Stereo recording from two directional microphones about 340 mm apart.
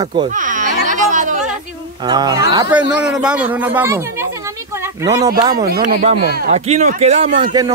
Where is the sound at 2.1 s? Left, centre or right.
Centre.